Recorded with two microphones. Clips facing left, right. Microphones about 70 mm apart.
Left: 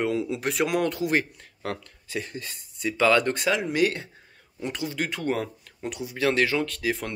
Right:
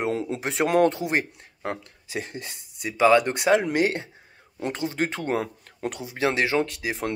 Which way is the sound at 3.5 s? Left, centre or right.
Right.